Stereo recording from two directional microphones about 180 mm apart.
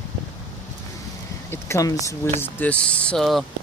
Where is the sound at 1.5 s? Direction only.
15° left (ahead or behind).